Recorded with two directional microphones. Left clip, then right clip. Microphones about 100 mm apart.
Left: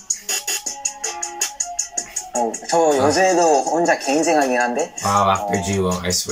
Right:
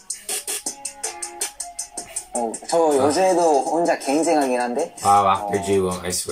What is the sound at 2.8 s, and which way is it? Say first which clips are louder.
Speech: left 1 dB; 20° right (ahead or behind).